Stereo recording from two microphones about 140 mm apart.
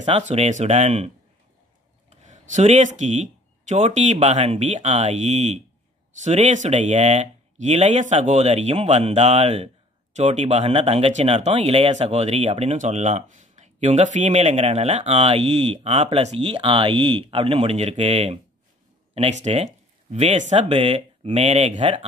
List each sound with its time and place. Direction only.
0.0 s speech: 50° right (ahead or behind)